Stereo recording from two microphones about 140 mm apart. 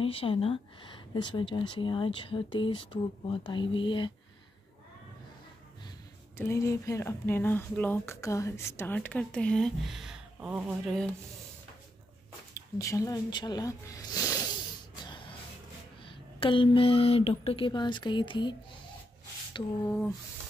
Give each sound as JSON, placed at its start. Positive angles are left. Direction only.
{"t": 0.0, "sound": "speech", "side_deg": 40}
{"t": 6.3, "sound": "speech", "side_deg": 20}
{"t": 12.7, "sound": "speech", "side_deg": 25}
{"t": 15.0, "sound": "a sound", "side_deg": 35}
{"t": 16.3, "sound": "speech", "side_deg": 40}